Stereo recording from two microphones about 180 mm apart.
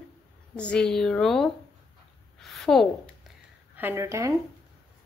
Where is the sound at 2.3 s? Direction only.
Centre (ahead or behind).